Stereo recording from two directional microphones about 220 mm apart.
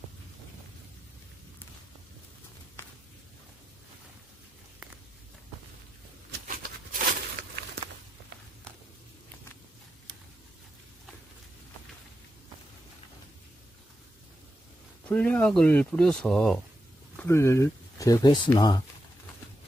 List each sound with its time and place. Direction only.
6.4 s a sound: 40° right (ahead or behind)
15.0 s speech: 5° left (ahead or behind)
17.2 s speech: 10° left (ahead or behind)